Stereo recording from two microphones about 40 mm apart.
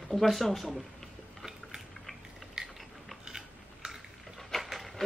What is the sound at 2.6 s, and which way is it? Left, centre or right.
Biting, centre.